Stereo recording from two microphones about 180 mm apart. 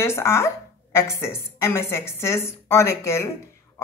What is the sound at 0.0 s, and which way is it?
Speech, 15° left (ahead or behind).